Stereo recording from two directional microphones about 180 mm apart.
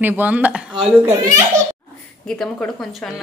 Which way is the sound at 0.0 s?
10° right (ahead or behind).